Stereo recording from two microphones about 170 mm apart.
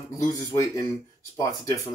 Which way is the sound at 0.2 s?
20° left (ahead or behind).